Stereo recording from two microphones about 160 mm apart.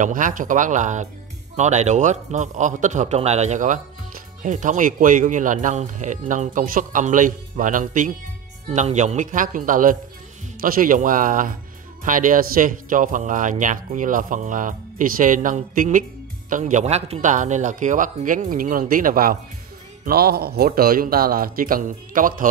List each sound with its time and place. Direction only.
0.0 s a man's voice: 55° right (ahead or behind)
20.1 s speech: 75° right (ahead or behind); by 22.5 s 55° right (ahead or behind)